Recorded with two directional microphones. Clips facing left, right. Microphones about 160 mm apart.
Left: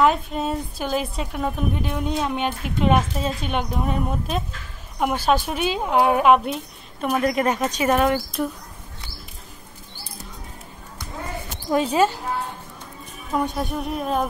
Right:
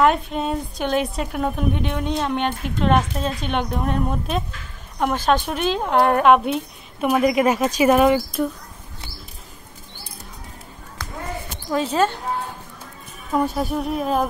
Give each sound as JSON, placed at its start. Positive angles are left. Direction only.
{"t": 0.0, "sound": "a woman's voice", "side_deg": 0}
{"t": 11.0, "sound": "basketball bounce", "side_deg": -90}
{"t": 11.7, "sound": "speech", "side_deg": 10}
{"t": 13.3, "sound": "a woman's voice", "side_deg": 0}